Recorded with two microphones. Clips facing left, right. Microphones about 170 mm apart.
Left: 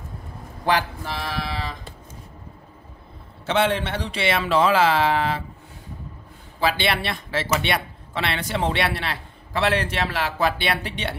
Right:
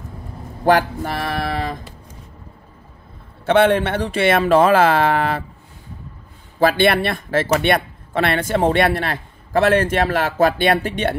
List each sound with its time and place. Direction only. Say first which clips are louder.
0.7 s speech: right 7 dB; 55° right (ahead or behind)
3.4 s speech: right 7 dB; 55° right (ahead or behind)
6.6 s speech: right 8 dB; 50° right (ahead or behind)